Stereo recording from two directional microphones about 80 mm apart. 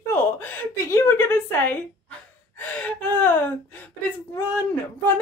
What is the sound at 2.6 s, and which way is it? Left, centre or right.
Gasp, left.